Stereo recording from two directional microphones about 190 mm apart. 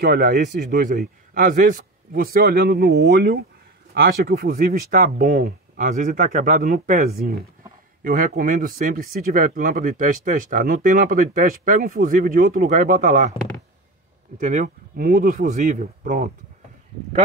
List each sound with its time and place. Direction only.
0.0 s speech: 50° right (ahead or behind)
14.4 s speech: 40° right (ahead or behind)